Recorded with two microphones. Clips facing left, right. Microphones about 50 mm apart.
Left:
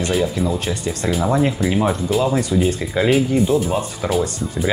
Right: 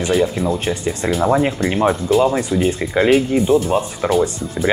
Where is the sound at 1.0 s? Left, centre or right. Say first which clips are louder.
Right 1 dB; right.